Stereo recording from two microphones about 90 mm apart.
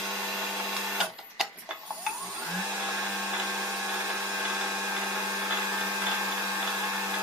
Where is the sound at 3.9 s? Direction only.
15° right (ahead or behind).